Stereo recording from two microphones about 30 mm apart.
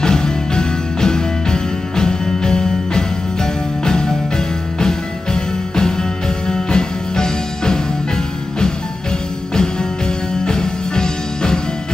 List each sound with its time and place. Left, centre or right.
0.0 s music: left
10.4 s music: left